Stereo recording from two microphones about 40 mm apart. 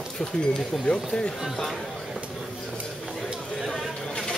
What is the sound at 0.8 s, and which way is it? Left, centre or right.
Speech, left.